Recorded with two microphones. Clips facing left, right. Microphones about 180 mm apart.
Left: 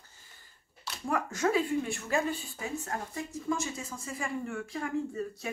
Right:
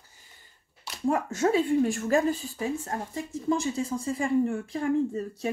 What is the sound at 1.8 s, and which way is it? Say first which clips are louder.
Speech: right 7 dB; 45° right (ahead or behind).